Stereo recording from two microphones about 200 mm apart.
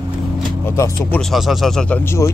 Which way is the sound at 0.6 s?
15° left (ahead or behind).